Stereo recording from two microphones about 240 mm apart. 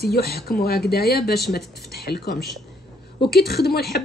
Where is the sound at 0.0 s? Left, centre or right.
Left.